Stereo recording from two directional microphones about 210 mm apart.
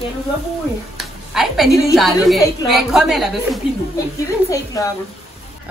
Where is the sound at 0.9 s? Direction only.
Centre (ahead or behind).